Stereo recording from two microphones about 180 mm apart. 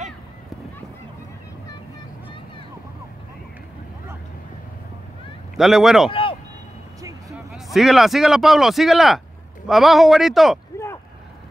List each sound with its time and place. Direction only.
5.6 s a man's voice: centre (ahead or behind)
6.0 s speech: 30° left (ahead or behind)
7.0 s vehicle: 20° right (ahead or behind)
7.5 s a man's voice: centre (ahead or behind)